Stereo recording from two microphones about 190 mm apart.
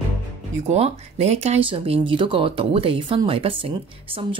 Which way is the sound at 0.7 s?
35° right (ahead or behind).